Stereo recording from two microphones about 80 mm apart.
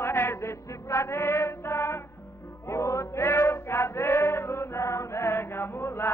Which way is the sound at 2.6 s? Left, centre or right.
Left.